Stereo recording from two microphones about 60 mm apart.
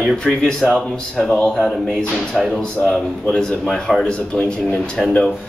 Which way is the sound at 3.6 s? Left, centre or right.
Centre.